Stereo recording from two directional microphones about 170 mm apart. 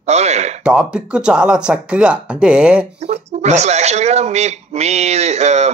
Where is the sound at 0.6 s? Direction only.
5° right (ahead or behind).